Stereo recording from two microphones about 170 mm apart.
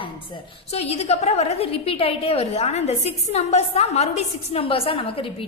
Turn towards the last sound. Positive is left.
turn(degrees=35)  # may be behind; listen again after turning